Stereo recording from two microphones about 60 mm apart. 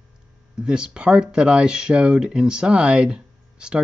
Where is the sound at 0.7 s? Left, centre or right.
Centre.